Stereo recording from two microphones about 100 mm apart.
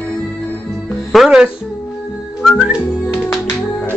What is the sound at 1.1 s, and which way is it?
Music, 5° right (ahead or behind).